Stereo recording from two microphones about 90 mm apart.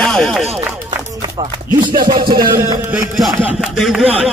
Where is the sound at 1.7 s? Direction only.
60° right (ahead or behind).